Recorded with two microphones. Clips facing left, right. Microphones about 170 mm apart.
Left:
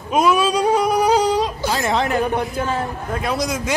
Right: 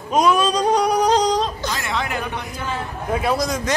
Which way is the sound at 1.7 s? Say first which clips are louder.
Left 10 dB; 40° left (ahead or behind).